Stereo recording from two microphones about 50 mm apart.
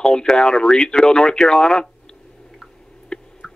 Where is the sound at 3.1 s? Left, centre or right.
Centre.